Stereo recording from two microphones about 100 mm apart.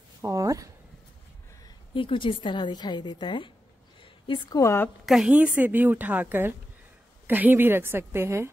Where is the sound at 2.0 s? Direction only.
60° left (ahead or behind).